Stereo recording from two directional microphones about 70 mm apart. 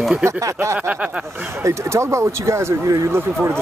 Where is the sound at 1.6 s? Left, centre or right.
Right.